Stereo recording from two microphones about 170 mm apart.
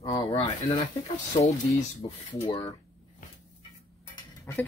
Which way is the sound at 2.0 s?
30° left (ahead or behind).